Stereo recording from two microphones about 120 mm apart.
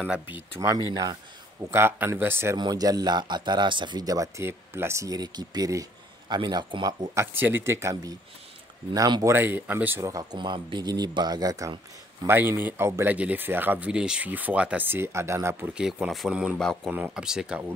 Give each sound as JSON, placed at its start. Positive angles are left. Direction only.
{"t": 0.0, "sound": "speech", "side_deg": -10}
{"t": 0.6, "sound": "speech", "side_deg": -35}
{"t": 1.7, "sound": "speech", "side_deg": -20}
{"t": 2.5, "sound": "speech", "side_deg": -35}
{"t": 7.2, "sound": "speech", "side_deg": -15}
{"t": 9.3, "sound": "speech", "side_deg": -15}
{"t": 10.0, "sound": "speech", "side_deg": -35}
{"t": 12.3, "sound": "speech", "side_deg": -20}
{"t": 15.7, "sound": "speech", "side_deg": -5}
{"t": 16.5, "sound": "speech", "side_deg": 5}
{"t": 16.9, "sound": "speech", "side_deg": -10}